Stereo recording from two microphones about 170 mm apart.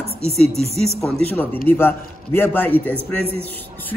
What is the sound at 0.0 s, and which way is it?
Speech, 35° right (ahead or behind).